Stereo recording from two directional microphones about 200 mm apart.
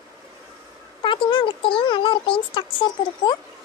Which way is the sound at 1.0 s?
25° left (ahead or behind).